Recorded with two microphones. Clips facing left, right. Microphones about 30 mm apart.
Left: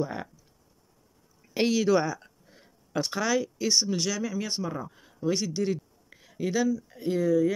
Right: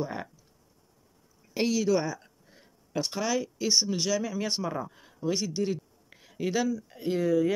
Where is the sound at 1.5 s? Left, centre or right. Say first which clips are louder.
Left 2 dB; left.